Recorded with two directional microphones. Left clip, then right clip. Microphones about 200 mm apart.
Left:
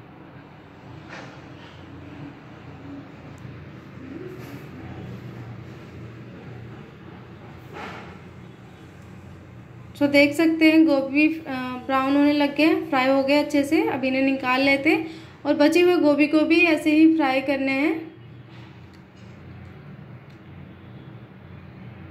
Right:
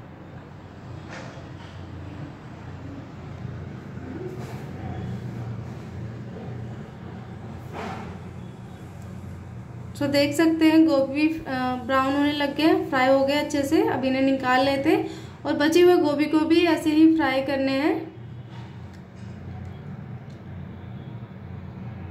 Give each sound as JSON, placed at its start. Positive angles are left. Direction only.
{"t": 9.9, "sound": "a woman's voice", "side_deg": 0}